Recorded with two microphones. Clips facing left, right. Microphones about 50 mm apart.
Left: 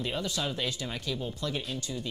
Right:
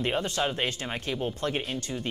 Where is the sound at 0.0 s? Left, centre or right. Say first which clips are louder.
Right 5 dB; right.